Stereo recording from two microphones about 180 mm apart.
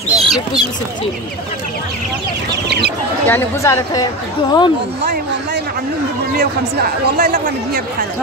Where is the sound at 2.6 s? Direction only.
70° right (ahead or behind).